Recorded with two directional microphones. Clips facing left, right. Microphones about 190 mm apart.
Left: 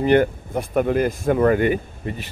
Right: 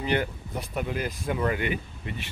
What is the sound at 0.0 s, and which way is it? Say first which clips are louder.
Speech: left 11 dB; 50° left (ahead or behind).